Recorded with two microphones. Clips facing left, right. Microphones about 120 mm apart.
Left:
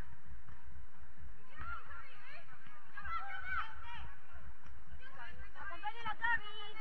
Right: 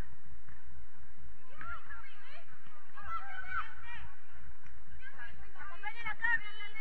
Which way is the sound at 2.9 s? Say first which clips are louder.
Right 1 dB; 30° right (ahead or behind).